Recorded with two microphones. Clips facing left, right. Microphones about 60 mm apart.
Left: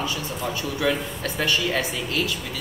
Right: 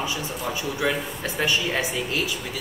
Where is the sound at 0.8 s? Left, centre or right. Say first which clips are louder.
Left 2 dB; centre.